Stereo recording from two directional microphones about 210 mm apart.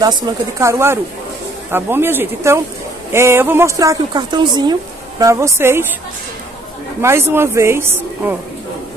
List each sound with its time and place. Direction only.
0.0 s a woman's voice: 15° right (ahead or behind)
7.0 s a woman's voice: 10° right (ahead or behind)